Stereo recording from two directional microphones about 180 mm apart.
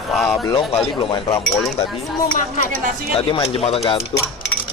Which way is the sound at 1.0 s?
30° left (ahead or behind).